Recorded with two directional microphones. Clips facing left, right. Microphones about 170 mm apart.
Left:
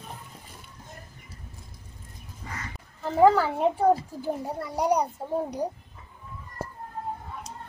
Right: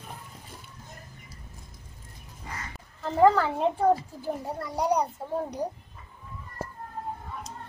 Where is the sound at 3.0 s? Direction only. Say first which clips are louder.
Left 1 dB; 5° left (ahead or behind).